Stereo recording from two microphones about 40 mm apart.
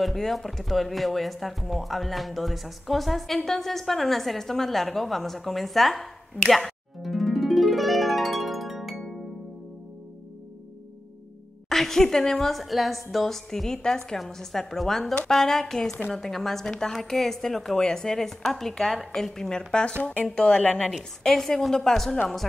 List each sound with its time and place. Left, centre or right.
0.0 s speech: centre
3.4 s a sound: centre
11.7 s a woman's voice: centre
19.7 s speech: left
21.3 s a woman's voice: centre